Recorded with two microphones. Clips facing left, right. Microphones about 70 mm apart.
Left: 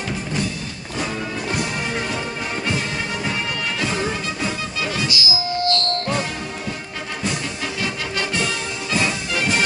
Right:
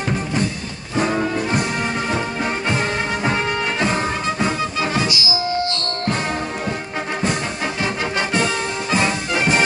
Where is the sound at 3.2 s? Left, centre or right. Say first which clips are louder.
Right 5 dB; right.